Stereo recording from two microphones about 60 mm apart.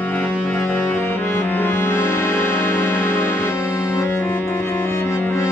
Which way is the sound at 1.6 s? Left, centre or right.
Left.